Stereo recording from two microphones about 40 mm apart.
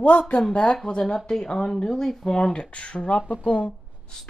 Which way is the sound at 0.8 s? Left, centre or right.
Left.